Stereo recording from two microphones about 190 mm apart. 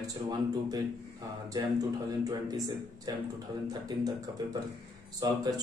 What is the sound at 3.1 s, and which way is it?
Speech, 20° right (ahead or behind).